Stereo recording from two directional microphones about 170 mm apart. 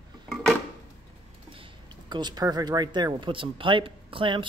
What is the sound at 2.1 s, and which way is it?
Speech, 25° right (ahead or behind).